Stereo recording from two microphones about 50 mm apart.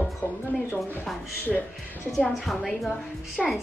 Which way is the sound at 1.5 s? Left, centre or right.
Centre.